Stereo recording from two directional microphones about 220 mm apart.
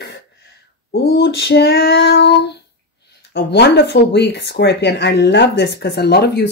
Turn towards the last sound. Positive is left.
turn(degrees=50)  # may be behind; listen again after turning